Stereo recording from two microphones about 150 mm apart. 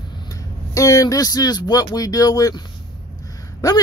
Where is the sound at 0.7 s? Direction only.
20° left (ahead or behind).